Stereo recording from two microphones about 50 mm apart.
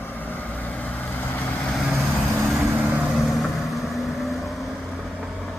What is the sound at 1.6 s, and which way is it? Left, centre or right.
Vehicle, centre.